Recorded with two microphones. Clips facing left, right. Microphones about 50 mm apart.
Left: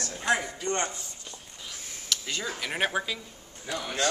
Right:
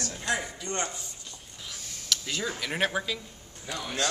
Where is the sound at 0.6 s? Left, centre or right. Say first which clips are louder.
Left 4 dB; left.